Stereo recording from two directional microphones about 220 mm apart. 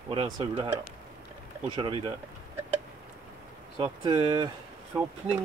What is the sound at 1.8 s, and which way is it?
Speech, 25° right (ahead or behind).